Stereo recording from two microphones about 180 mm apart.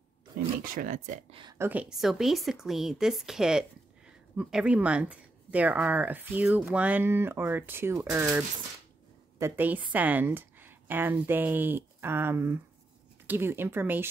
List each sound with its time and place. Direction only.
0.7 s speech: 45° right (ahead or behind)
1.4 s a woman's voice: 20° right (ahead or behind)
1.7 s a woman's voice: 5° right (ahead or behind)